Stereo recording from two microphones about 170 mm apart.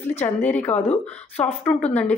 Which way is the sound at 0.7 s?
40° left (ahead or behind).